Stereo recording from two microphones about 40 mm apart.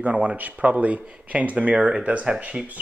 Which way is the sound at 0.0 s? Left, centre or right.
Right.